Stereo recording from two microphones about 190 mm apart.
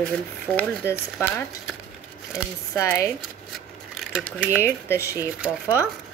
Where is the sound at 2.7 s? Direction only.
15° left (ahead or behind).